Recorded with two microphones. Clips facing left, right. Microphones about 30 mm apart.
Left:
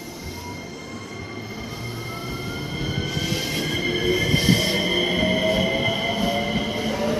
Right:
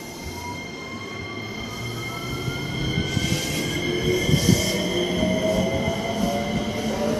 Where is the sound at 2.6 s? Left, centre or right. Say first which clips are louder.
Right 1 dB; centre.